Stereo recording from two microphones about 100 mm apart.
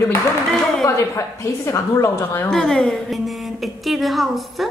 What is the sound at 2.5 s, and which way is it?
A woman's voice, 5° left (ahead or behind).